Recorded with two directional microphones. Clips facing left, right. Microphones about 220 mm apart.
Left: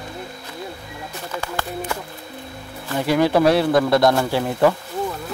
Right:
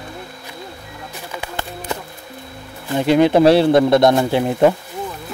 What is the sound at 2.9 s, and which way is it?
A man's voice, 20° right (ahead or behind).